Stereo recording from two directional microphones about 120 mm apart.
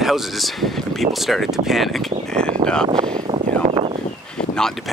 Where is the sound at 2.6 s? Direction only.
5° left (ahead or behind).